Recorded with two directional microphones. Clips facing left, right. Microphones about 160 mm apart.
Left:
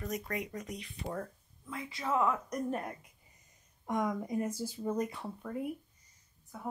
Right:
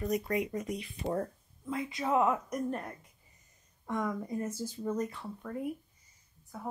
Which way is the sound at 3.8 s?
15° left (ahead or behind).